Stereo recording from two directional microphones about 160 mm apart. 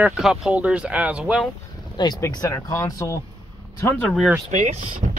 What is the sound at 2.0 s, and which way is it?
Speech, 20° left (ahead or behind).